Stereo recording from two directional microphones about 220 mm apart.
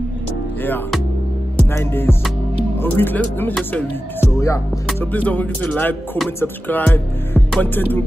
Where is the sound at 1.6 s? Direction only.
10° left (ahead or behind).